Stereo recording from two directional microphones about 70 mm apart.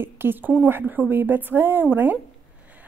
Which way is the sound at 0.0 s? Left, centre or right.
Right.